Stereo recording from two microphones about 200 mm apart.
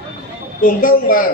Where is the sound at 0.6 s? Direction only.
45° left (ahead or behind).